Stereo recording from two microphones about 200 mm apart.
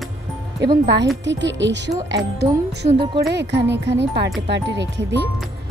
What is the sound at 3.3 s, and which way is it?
Speech, 60° right (ahead or behind).